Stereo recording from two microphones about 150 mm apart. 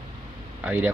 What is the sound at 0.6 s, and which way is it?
Speech, 10° right (ahead or behind).